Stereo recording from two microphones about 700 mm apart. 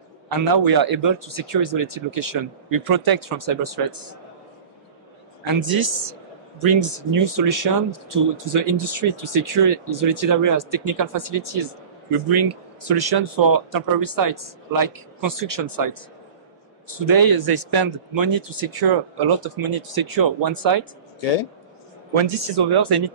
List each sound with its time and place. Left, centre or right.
0.4 s speech: right
5.4 s speech: right
22.1 s speech: right